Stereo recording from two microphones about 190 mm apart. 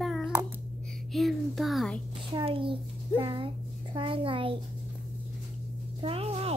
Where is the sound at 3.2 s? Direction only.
25° right (ahead or behind).